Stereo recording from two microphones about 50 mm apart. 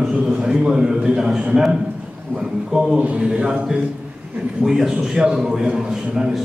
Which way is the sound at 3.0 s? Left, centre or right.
Right.